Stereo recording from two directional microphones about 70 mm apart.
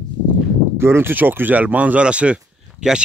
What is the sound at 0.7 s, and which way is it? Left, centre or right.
Speech, right.